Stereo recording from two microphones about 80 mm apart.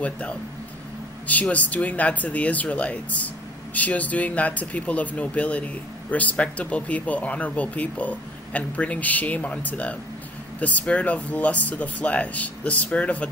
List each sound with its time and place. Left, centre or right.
0.0 s speech: centre